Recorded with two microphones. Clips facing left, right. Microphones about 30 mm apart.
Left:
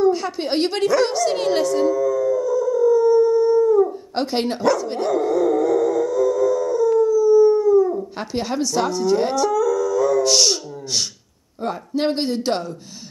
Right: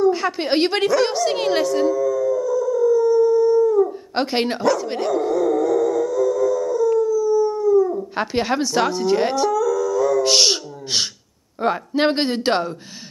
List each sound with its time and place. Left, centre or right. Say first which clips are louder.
0.1 s a woman's voice: right 2 dB; centre
1.9 s howl: even; centre
4.1 s a woman's voice: right 1 dB; centre
5.3 s howl: left 1 dB; centre
8.2 s speech: right 7 dB; right
9.5 s howl: even; centre
10.2 s speech: right 1 dB; right